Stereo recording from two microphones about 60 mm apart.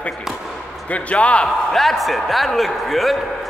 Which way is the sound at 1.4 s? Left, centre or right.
Centre.